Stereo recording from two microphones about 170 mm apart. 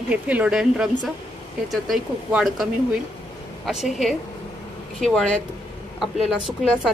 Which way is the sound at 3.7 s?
5° right (ahead or behind).